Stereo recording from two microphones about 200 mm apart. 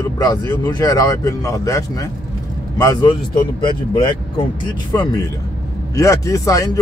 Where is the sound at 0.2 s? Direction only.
20° left (ahead or behind).